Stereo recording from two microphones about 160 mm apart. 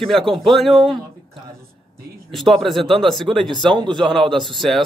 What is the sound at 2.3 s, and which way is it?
Speech, centre (ahead or behind).